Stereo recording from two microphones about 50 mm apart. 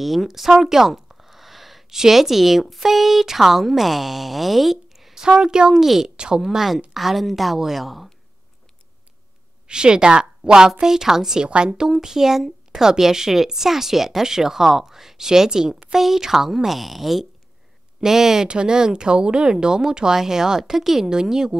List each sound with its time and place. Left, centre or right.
0.0 s speech: centre
6.4 s a woman's voice: centre
9.7 s a woman's voice: centre